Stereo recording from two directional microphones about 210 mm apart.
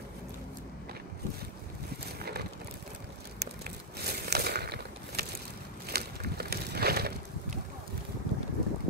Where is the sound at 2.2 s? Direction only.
50° right (ahead or behind).